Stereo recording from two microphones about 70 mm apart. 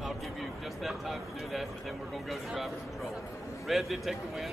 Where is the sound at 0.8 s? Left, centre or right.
Centre.